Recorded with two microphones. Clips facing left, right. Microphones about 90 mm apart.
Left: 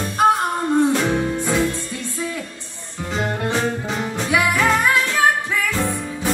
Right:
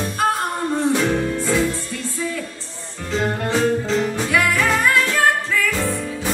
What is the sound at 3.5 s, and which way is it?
Music, 15° left (ahead or behind).